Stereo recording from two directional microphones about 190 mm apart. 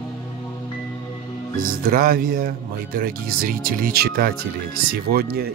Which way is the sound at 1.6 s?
50° right (ahead or behind).